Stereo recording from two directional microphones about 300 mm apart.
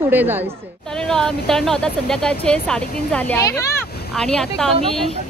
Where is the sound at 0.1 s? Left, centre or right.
Centre.